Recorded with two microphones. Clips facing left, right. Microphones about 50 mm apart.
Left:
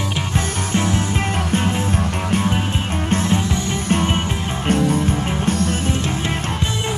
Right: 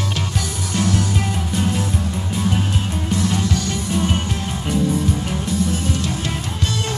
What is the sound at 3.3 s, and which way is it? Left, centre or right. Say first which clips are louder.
Music: left 1 dB; left.